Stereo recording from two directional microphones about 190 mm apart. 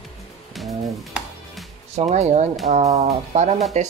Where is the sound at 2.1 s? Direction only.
40° right (ahead or behind).